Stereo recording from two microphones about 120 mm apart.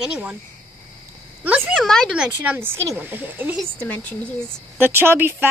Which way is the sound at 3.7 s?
15° left (ahead or behind).